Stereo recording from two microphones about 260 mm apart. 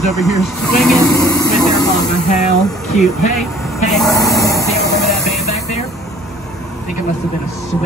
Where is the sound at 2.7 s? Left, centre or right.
Centre.